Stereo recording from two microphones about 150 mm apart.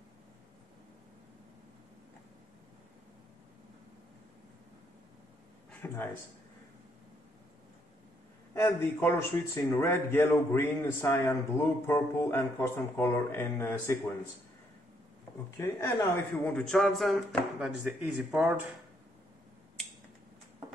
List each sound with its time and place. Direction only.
5.7 s a sound: 15° left (ahead or behind)
8.5 s a man's voice: 15° left (ahead or behind)
15.5 s a man's voice: 15° left (ahead or behind)
16.5 s speech: centre (ahead or behind)